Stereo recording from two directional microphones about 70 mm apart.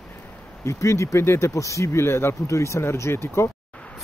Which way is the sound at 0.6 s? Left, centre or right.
Left.